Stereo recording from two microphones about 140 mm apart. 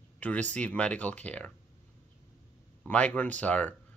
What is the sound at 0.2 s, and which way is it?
Speech, 10° left (ahead or behind).